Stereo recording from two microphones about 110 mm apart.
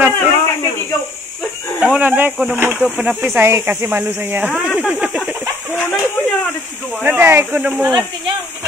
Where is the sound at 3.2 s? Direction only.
20° right (ahead or behind).